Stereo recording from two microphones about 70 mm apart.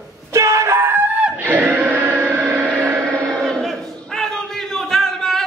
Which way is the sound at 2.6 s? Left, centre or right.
Centre.